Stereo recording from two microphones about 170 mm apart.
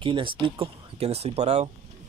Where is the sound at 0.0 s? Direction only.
30° right (ahead or behind).